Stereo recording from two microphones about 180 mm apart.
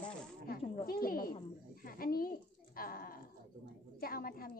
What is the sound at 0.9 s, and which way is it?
A woman's voice, 55° left (ahead or behind).